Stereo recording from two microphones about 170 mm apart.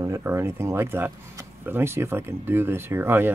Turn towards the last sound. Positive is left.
turn(degrees=-15)  # may be behind; listen again after turning